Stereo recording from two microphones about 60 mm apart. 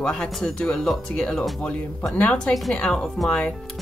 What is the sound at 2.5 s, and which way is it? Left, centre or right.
Speech, centre.